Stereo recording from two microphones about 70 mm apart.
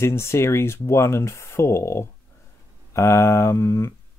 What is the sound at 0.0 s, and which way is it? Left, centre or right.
Speech, left.